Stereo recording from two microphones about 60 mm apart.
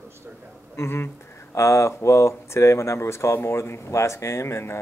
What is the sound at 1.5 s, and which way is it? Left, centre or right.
A man's voice, left.